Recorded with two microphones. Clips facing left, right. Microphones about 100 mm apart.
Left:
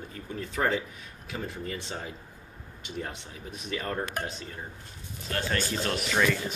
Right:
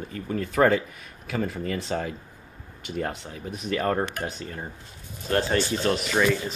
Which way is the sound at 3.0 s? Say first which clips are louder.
Right 7 dB; 55° right (ahead or behind).